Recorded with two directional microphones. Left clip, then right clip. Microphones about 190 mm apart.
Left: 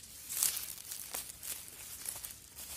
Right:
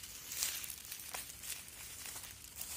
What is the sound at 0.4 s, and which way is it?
Crumpling, 65° left (ahead or behind).